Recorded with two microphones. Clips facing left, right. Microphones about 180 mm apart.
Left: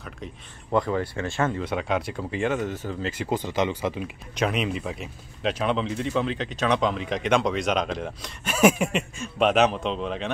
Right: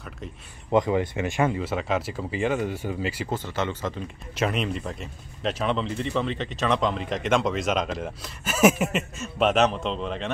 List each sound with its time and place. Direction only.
0.7 s speech: 15° right (ahead or behind)
3.3 s speech: 15° left (ahead or behind)
4.4 s speech: centre (ahead or behind)